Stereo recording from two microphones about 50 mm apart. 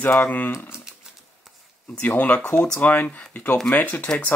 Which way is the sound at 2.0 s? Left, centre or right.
Left.